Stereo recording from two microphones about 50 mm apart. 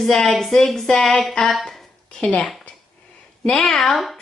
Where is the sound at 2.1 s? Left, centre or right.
Left.